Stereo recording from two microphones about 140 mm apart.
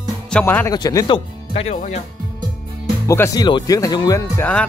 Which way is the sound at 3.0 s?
20° left (ahead or behind).